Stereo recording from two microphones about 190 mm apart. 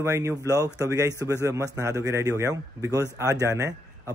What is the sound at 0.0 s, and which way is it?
Speech, 15° right (ahead or behind).